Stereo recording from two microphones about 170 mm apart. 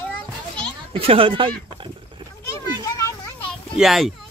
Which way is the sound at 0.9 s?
35° right (ahead or behind).